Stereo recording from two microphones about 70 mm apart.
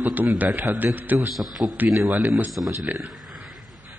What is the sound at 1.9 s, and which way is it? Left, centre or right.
Speech, right.